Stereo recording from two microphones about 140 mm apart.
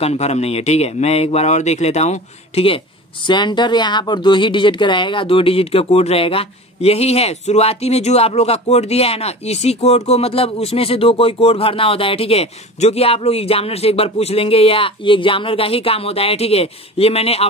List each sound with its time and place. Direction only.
0.0 s a woman's voice: 50° left (ahead or behind)
3.3 s a woman's voice: 30° left (ahead or behind)